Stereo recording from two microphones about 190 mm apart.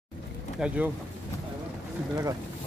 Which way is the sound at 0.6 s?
5° right (ahead or behind).